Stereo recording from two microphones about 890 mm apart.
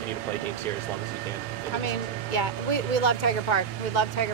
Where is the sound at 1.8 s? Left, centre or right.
Left.